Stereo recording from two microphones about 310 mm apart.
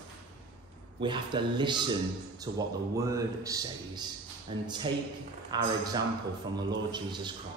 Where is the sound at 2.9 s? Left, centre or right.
Centre.